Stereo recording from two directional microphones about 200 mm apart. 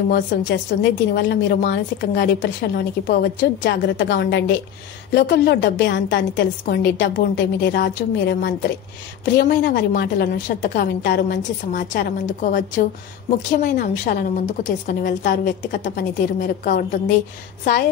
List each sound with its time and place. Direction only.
0.1 s a woman's voice: 60° left (ahead or behind)
3.9 s a woman's voice: 60° left (ahead or behind); by 17.0 s 45° left (ahead or behind)